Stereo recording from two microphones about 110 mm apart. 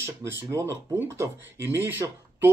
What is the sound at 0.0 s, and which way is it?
Speech, 25° right (ahead or behind).